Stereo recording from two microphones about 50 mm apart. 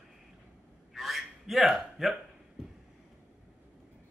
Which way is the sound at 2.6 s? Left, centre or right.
Centre.